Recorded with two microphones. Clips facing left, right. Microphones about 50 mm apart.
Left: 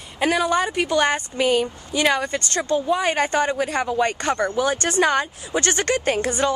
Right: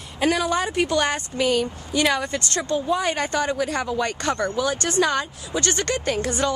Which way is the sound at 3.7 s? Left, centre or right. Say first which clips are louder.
Left 3 dB; centre.